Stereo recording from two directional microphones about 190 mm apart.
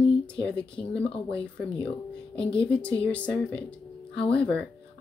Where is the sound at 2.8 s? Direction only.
5° left (ahead or behind).